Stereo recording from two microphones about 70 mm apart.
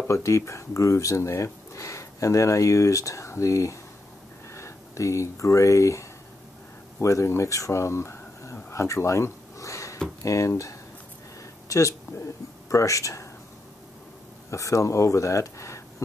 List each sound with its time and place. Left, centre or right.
0.1 s speech: left
8.5 s a sound: left
10.2 s speech: left
12.1 s speech: left
14.5 s speech: left